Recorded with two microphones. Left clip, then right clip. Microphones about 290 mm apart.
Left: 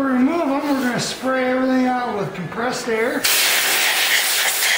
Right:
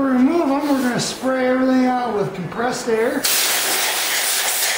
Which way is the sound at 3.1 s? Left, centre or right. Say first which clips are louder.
Left 2 dB; centre.